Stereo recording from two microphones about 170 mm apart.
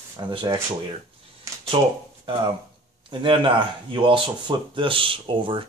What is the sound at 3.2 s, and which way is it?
Speech, 30° right (ahead or behind).